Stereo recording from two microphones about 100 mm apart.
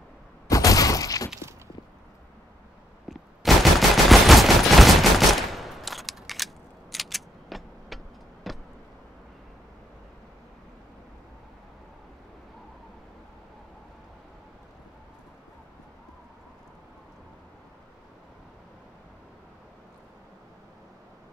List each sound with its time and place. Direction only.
0.5 s a sound: 35° left (ahead or behind)
3.1 s gunshot: centre (ahead or behind)
8.5 s vehicle: centre (ahead or behind)